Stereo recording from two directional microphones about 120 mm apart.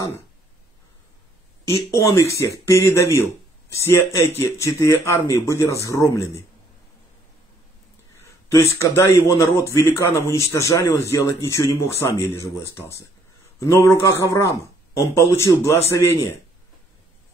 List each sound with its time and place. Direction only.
1.7 s a man's voice: 25° left (ahead or behind)
8.1 s a sound: 25° left (ahead or behind)
8.7 s a man's voice: 20° left (ahead or behind)